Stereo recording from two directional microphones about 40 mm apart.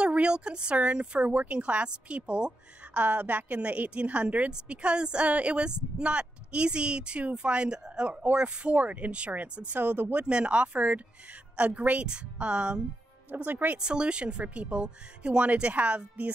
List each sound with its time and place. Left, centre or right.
0.0 s a woman's voice: right
4.5 s speech: right
8.1 s a woman's voice: right
9.8 s speech: right
10.1 s a woman's voice: right
13.3 s speech: right
13.7 s a woman's voice: right